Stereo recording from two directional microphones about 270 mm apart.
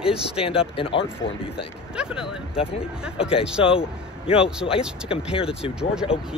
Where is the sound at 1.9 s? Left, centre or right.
Centre.